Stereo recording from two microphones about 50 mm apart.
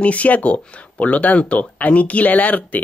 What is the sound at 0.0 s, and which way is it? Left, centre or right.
Speech, left.